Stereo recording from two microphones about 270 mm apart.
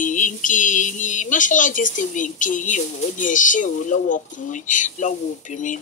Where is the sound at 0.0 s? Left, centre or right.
Left.